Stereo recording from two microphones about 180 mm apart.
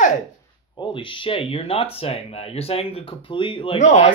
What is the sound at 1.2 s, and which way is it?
Speech, 30° left (ahead or behind).